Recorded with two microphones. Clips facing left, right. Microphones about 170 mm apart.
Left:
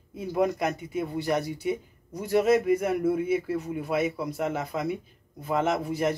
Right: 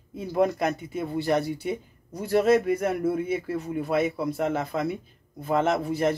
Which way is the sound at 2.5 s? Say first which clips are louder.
Even; 45° right (ahead or behind).